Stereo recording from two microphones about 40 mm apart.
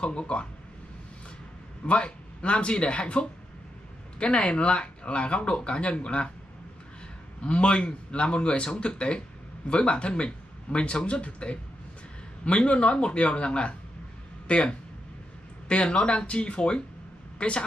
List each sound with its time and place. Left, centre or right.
0.0 s speech: left
1.9 s speech: left
7.4 s a woman's voice: left